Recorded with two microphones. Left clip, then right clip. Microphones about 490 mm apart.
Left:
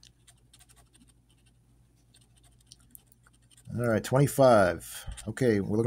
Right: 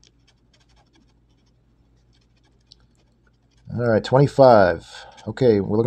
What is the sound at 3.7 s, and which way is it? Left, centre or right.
Speech, left.